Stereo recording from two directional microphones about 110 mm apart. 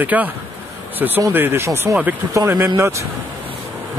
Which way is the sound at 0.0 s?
15° right (ahead or behind).